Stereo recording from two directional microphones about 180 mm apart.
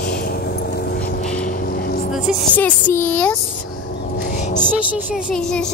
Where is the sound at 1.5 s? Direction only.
55° left (ahead or behind).